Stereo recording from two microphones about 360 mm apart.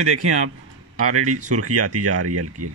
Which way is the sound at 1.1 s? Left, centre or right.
Right.